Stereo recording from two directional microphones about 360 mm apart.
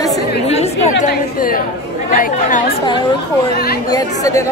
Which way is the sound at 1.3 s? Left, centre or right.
Left.